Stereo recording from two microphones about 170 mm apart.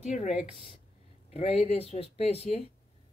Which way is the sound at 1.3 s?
35° left (ahead or behind).